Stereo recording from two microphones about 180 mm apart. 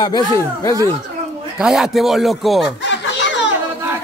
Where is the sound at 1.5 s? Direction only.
5° right (ahead or behind).